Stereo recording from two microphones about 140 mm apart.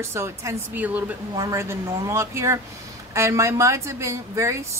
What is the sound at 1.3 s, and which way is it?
A woman's voice, 25° right (ahead or behind).